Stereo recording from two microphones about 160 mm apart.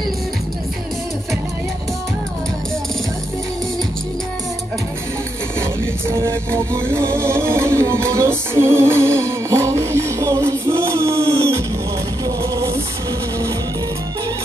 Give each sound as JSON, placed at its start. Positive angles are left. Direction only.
{"t": 6.2, "sound": "music", "side_deg": -15}